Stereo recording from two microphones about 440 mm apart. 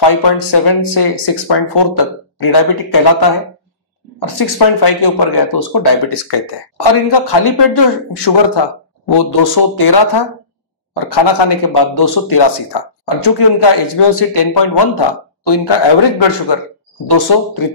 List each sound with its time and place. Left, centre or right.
0.0 s speech: left